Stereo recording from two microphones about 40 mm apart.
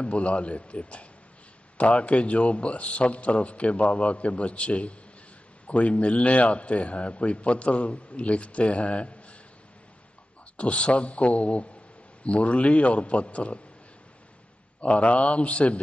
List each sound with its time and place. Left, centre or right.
0.0 s a man's voice: left
10.6 s a man's voice: left
14.8 s a man's voice: left